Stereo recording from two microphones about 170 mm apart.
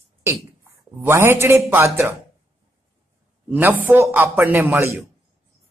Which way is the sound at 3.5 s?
10° right (ahead or behind).